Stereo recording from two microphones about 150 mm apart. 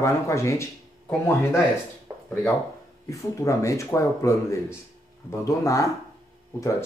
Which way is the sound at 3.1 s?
20° left (ahead or behind).